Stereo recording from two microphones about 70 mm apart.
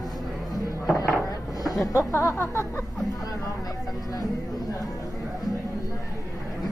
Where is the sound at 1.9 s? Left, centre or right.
Left.